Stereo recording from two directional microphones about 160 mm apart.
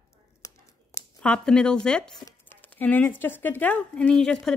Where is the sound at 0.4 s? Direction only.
20° left (ahead or behind).